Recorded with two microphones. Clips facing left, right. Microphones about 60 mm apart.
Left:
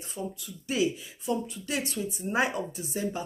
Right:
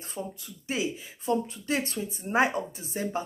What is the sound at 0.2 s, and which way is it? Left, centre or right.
Speech, right.